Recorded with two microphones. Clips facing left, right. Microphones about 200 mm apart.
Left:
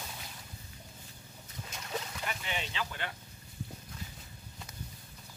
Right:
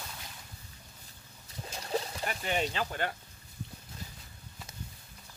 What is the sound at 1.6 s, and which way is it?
Boat, 35° right (ahead or behind).